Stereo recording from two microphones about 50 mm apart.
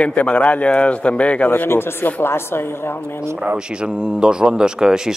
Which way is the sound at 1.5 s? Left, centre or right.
Left.